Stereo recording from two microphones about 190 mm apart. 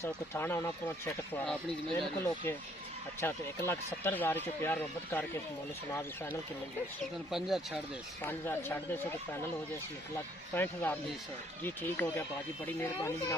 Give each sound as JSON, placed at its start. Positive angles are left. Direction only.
{"t": 0.0, "sound": "speech", "side_deg": 10}
{"t": 3.2, "sound": "speech", "side_deg": 10}
{"t": 7.2, "sound": "speech", "side_deg": 0}
{"t": 8.2, "sound": "speech", "side_deg": 10}
{"t": 10.5, "sound": "speech", "side_deg": 10}